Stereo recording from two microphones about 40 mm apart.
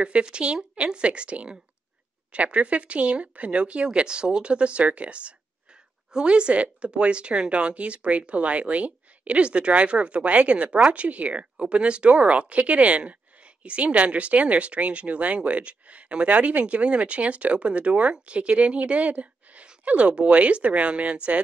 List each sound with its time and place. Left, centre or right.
0.0 s a woman's voice: right